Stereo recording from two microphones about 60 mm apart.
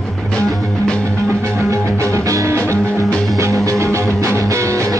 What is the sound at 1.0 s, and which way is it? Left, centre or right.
Music, right.